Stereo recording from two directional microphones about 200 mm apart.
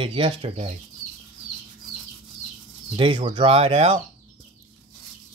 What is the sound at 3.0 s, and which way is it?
Speech, 25° right (ahead or behind).